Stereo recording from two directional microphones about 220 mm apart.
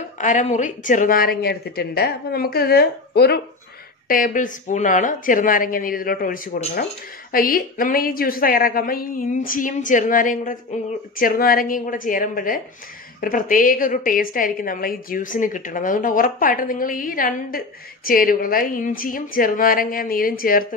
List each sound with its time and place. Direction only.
0.2 s a woman's voice: 35° left (ahead or behind)